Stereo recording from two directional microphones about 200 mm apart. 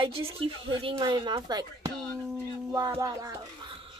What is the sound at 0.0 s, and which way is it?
Speech, 30° right (ahead or behind).